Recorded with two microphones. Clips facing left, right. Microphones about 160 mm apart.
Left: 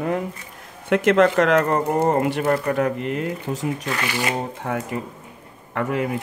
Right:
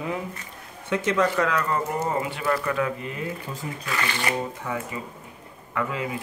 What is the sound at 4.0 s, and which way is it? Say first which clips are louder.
Speech: right 1 dB; 15° left (ahead or behind).